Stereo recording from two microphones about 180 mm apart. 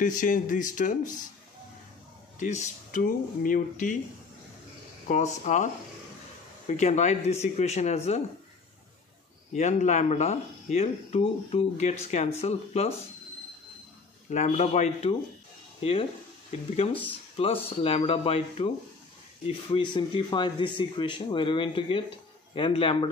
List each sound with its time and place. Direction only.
0.0 s speech: 45° left (ahead or behind)
2.3 s speech: 40° left (ahead or behind)
5.0 s speech: 40° left (ahead or behind)
6.8 s speech: 40° left (ahead or behind)
9.5 s speech: 40° left (ahead or behind)
14.3 s speech: 40° left (ahead or behind)